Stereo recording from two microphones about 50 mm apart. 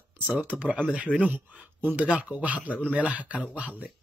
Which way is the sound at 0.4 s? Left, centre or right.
Right.